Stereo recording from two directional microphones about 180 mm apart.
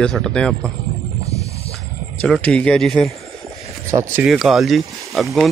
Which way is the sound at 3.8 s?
15° right (ahead or behind).